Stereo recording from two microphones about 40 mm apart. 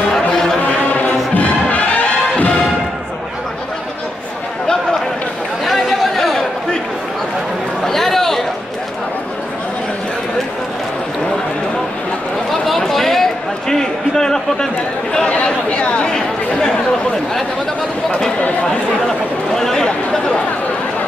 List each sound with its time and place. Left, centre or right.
0.1 s a sound: centre
0.7 s music: left
5.7 s chatter: centre
7.8 s chatter: centre
12.4 s a sound: centre
15.2 s chatter: left
19.0 s chatter: centre